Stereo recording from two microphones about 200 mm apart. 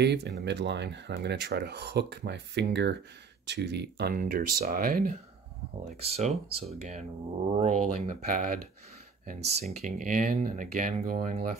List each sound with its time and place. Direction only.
0.0 s speech: 55° right (ahead or behind)
5.9 s speech: 30° right (ahead or behind)